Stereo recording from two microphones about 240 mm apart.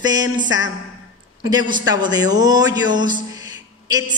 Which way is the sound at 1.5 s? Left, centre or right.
Centre.